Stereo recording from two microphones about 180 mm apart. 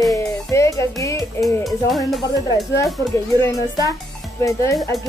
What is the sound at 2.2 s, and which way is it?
Speech, 20° left (ahead or behind).